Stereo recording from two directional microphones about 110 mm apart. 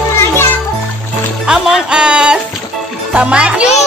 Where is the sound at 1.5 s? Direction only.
5° right (ahead or behind).